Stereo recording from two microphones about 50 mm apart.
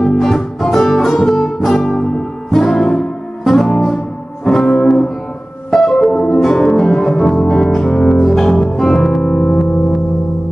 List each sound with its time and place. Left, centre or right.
0.1 s music: centre